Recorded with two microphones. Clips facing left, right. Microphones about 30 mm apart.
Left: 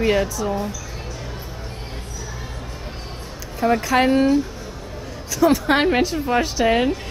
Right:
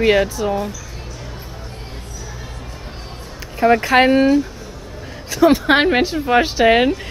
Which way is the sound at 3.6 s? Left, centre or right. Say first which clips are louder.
Right 5 dB; right.